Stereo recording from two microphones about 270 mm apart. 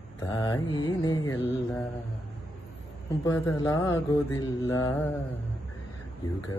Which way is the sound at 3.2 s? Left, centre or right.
Centre.